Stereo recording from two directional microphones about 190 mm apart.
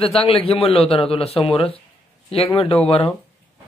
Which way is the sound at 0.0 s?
30° left (ahead or behind).